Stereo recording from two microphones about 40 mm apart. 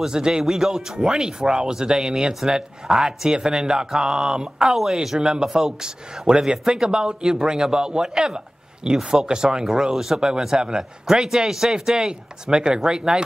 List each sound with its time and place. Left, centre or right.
0.0 s a man's voice: centre
4.6 s a man's voice: centre
5.3 s a man's voice: centre